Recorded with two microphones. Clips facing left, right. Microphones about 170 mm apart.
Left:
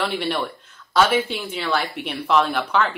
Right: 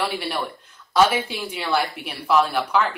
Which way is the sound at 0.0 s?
10° right (ahead or behind).